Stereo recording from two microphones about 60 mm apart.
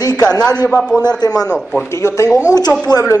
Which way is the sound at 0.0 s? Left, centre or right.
Left.